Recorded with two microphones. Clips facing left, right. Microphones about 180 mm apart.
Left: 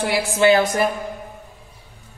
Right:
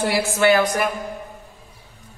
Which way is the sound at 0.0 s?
20° left (ahead or behind).